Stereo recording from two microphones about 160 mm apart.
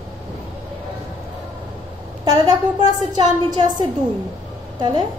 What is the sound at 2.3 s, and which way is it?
A woman's voice, 25° right (ahead or behind).